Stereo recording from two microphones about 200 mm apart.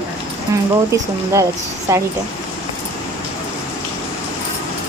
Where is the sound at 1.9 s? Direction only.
15° right (ahead or behind).